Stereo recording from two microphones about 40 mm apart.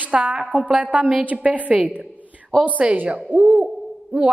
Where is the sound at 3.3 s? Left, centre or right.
Right.